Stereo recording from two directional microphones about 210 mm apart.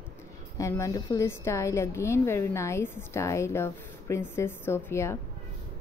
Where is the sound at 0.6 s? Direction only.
15° left (ahead or behind).